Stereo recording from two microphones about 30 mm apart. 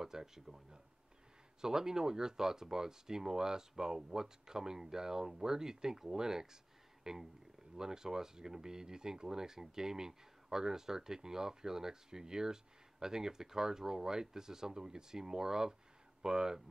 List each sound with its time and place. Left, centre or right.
0.0 s speech: centre